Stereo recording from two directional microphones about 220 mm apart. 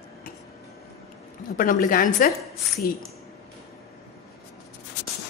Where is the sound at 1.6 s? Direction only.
40° left (ahead or behind).